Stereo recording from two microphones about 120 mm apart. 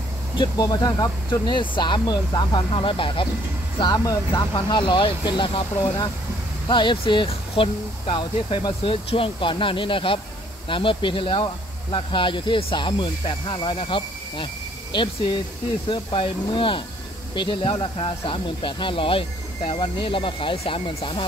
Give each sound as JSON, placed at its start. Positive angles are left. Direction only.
{"t": 0.4, "sound": "speech", "side_deg": 35}
{"t": 3.8, "sound": "speech", "side_deg": 30}